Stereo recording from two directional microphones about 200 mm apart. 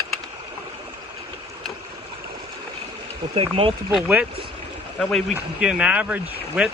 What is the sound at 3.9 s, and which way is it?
Speech, 5° right (ahead or behind).